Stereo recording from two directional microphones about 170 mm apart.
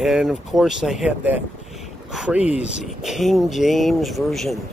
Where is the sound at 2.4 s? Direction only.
40° left (ahead or behind).